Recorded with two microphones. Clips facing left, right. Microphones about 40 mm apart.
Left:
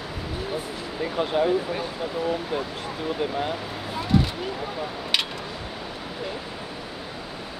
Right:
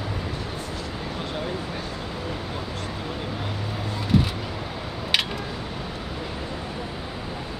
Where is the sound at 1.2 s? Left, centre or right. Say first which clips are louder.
Left 11 dB; centre.